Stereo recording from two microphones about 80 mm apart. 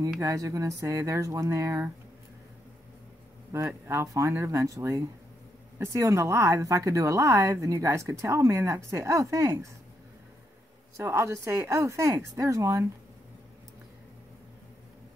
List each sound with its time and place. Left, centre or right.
0.2 s speech: right
3.8 s speech: right
11.0 s speech: right